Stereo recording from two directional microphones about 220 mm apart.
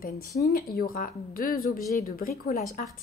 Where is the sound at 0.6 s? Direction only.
40° left (ahead or behind).